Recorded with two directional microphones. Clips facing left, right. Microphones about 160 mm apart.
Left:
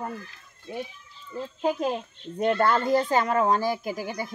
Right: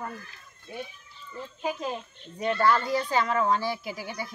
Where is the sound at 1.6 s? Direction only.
50° left (ahead or behind).